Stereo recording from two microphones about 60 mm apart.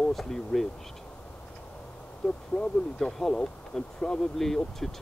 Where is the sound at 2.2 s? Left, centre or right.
Centre.